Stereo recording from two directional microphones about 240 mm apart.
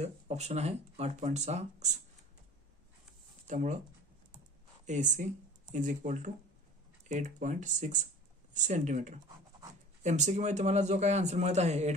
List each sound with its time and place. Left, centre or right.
0.0 s speech: right
3.4 s speech: right
4.8 s speech: right